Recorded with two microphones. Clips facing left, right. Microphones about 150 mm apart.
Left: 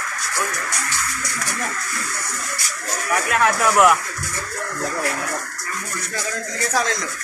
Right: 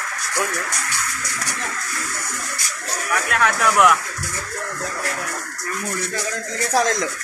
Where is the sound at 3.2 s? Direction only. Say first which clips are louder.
Left 1 dB; 5° left (ahead or behind).